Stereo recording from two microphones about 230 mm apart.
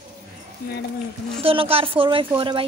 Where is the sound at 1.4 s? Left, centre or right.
Right.